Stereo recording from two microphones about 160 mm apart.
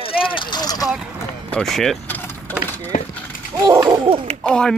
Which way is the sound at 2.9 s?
60° left (ahead or behind).